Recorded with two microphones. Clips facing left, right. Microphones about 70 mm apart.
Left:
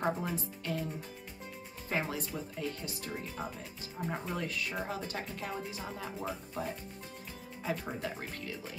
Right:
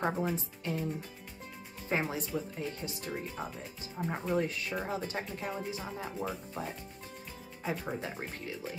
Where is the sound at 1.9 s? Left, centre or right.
Right.